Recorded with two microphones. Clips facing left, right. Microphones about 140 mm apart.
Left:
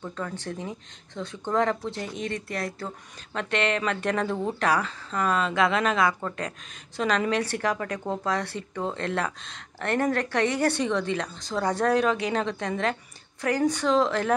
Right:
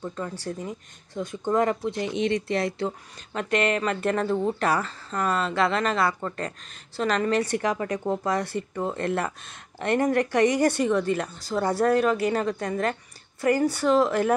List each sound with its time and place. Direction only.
0.0 s speech: 10° right (ahead or behind)
2.2 s speech: 25° right (ahead or behind)
3.3 s speech: 5° right (ahead or behind)